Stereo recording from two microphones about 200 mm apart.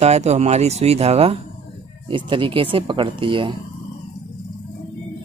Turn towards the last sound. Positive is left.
turn(degrees=-25)  # may be behind; listen again after turning